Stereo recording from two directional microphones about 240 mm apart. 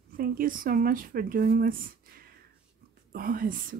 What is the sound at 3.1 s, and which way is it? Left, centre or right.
Speech, right.